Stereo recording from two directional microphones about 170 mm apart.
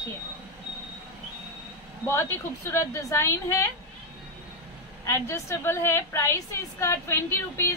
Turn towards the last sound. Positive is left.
turn(degrees=15)  # may be behind; listen again after turning